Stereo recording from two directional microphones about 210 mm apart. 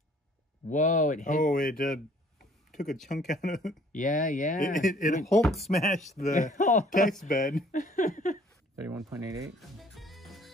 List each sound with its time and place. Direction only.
0.7 s a man's voice: 35° left (ahead or behind)
5.2 s speech: centre (ahead or behind)
5.9 s a man's voice: 35° left (ahead or behind)
8.8 s speech: 15° right (ahead or behind)
9.6 s music: centre (ahead or behind)